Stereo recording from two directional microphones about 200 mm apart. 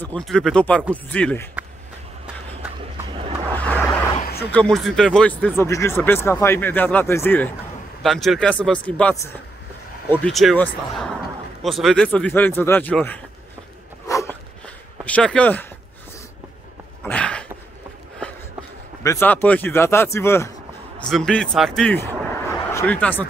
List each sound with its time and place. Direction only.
0.0 s speech: 5° left (ahead or behind)
3.2 s vehicle: 30° right (ahead or behind)
4.5 s speech: 5° left (ahead or behind)
14.0 s dog: 15° left (ahead or behind)
15.0 s speech: 5° left (ahead or behind)
17.0 s a sound: 5° left (ahead or behind)
19.0 s a man's voice: 10° left (ahead or behind)